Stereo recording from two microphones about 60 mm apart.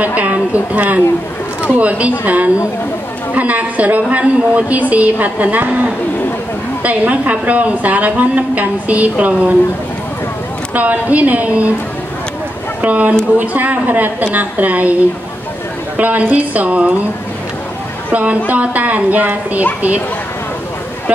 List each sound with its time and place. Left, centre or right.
0.0 s a woman's voice: right
6.8 s a woman's voice: right
10.7 s a woman's voice: right
12.8 s a woman's voice: right
16.0 s a woman's voice: right
18.1 s a woman's voice: right